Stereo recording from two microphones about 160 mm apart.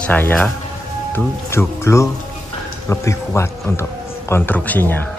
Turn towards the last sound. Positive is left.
turn(degrees=10)  # may be behind; listen again after turning